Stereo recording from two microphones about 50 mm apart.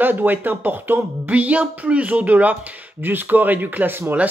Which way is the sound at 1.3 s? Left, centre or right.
Right.